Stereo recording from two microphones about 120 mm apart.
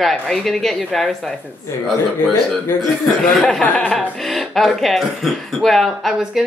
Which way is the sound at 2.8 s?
5° left (ahead or behind).